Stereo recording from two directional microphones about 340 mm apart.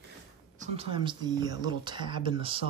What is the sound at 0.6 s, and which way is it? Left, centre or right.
Speech, centre.